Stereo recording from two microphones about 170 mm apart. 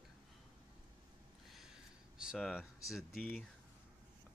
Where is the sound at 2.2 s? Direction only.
Centre (ahead or behind).